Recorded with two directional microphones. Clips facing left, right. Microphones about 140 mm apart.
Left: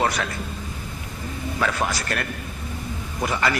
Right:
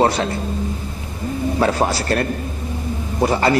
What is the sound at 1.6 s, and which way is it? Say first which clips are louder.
A man's voice: right 6 dB; 30° right (ahead or behind).